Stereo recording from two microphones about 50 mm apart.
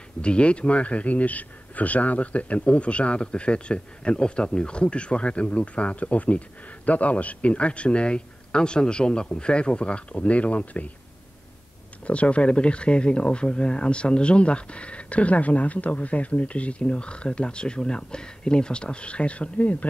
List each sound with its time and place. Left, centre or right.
0.2 s speech: left
12.1 s speech: left